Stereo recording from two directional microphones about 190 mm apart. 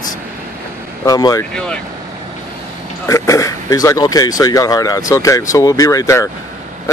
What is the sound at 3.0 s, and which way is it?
Speech, 15° left (ahead or behind).